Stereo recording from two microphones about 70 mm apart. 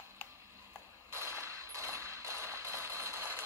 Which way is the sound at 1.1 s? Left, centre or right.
Right.